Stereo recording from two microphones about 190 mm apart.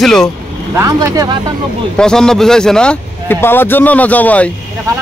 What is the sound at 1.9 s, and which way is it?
Speech, 5° left (ahead or behind).